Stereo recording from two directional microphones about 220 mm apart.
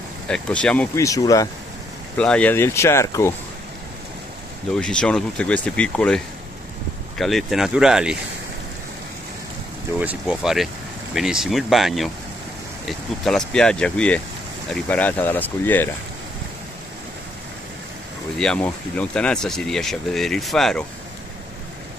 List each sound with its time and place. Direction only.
0.3 s speech: 5° left (ahead or behind)
2.1 s speech: 5° left (ahead or behind)
4.7 s speech: 5° left (ahead or behind)
9.9 s speech: 5° right (ahead or behind)
13.2 s speech: centre (ahead or behind)
18.4 s speech: 5° left (ahead or behind)